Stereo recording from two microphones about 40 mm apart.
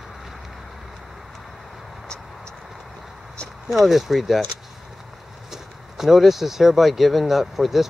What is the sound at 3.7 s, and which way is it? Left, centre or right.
Speech, centre.